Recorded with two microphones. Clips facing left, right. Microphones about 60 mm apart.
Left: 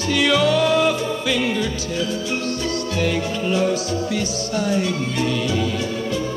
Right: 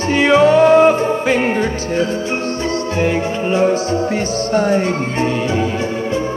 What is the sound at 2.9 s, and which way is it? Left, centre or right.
Speech, right.